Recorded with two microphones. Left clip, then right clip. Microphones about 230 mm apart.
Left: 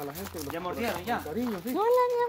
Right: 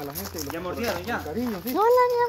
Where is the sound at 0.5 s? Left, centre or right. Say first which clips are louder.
Right 3 dB; left.